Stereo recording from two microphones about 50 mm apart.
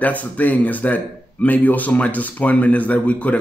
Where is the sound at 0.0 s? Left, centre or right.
Left.